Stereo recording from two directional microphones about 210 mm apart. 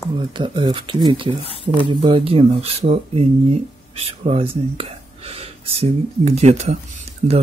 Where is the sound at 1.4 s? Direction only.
25° left (ahead or behind).